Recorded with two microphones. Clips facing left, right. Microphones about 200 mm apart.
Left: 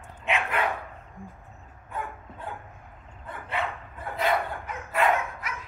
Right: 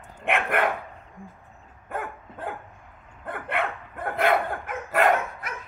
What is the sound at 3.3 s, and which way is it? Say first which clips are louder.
Dog: right 3 dB; 60° right (ahead or behind).